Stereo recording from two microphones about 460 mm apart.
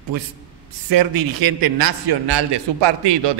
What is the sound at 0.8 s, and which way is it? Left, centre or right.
A man's voice, right.